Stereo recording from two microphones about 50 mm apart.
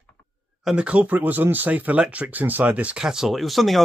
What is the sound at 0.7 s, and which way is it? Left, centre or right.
Speech, right.